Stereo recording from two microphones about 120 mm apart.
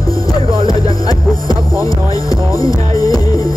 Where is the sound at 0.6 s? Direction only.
45° right (ahead or behind).